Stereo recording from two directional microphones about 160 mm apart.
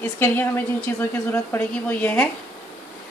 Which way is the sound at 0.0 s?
10° left (ahead or behind).